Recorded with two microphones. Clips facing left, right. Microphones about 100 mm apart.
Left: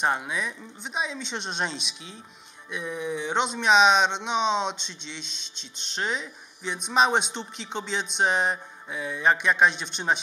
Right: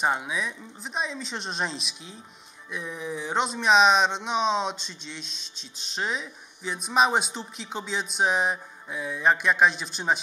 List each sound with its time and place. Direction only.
0.0 s speech: centre (ahead or behind)